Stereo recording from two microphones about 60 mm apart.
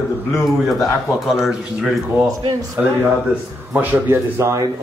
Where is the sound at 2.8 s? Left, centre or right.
Right.